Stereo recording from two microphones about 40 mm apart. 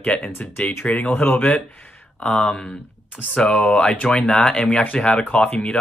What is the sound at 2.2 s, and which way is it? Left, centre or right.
Speech, left.